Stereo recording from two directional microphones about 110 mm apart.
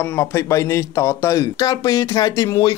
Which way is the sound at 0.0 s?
25° left (ahead or behind).